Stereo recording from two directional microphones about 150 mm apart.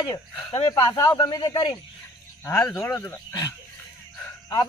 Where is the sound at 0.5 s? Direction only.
30° left (ahead or behind).